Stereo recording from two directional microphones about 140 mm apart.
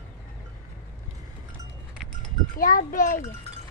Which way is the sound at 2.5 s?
85° left.